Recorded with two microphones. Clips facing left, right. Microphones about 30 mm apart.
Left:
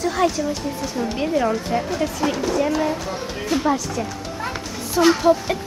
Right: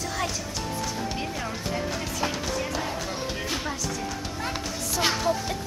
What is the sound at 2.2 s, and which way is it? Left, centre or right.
Speech, centre.